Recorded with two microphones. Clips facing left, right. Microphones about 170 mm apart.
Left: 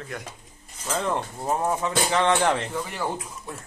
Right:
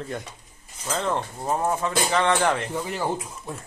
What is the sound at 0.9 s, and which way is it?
Speech, 10° left (ahead or behind).